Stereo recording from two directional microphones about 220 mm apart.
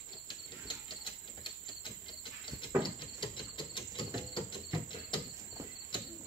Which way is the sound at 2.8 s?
20° left (ahead or behind).